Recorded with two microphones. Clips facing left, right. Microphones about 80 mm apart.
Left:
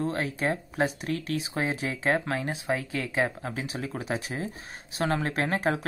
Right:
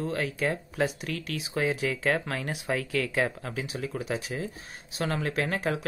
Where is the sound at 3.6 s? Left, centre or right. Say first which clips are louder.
Right 2 dB; left.